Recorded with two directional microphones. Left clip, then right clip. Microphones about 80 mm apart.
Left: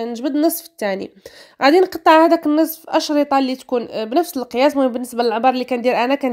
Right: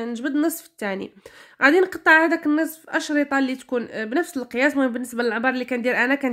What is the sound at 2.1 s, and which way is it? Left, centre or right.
A woman's voice, left.